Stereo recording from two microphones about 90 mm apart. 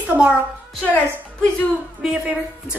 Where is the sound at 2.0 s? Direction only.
10° right (ahead or behind).